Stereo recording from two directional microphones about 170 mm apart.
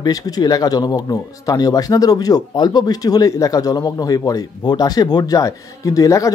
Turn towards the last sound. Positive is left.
turn(degrees=20)  # may be behind; listen again after turning